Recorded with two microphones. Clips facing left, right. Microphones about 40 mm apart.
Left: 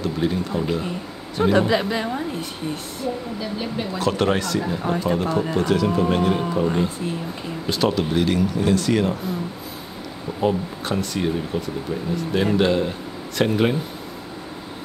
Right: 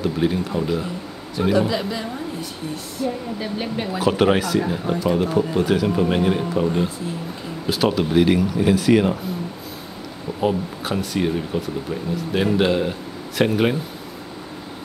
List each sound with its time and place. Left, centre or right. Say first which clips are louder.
0.0 s speech: right 2 dB; centre
1.7 s a woman's voice: left 3 dB; left
3.3 s speech: right 1 dB; right
6.5 s speech: even; centre
10.4 s speech: even; centre